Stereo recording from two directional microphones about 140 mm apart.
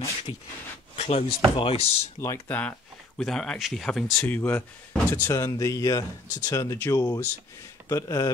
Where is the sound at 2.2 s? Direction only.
15° left (ahead or behind).